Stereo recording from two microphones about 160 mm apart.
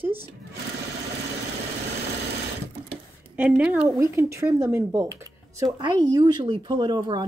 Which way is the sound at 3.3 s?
10° right (ahead or behind).